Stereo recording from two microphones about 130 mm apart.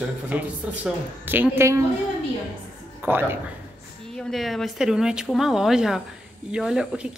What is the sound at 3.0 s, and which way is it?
Speech, 15° right (ahead or behind).